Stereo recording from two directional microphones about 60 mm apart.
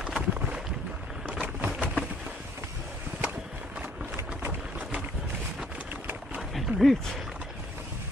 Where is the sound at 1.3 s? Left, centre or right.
Centre.